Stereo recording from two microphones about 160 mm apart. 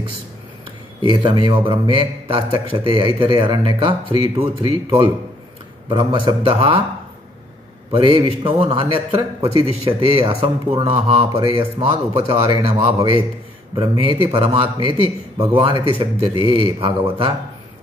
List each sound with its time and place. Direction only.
1.0 s speech: 30° right (ahead or behind)
7.9 s speech: 30° right (ahead or behind)
15.7 s speech: 35° left (ahead or behind)
16.0 s speech: 35° right (ahead or behind)